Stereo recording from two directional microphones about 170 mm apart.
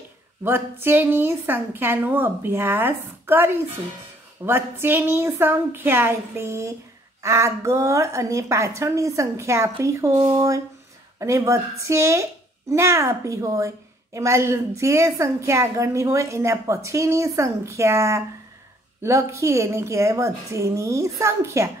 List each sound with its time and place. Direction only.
0.4 s a woman's voice: 15° right (ahead or behind)